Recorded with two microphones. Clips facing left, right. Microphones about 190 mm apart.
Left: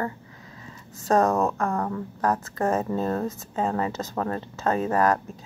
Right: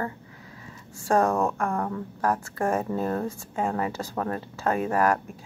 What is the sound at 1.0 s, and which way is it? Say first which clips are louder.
Speech: left 1 dB; 15° right (ahead or behind).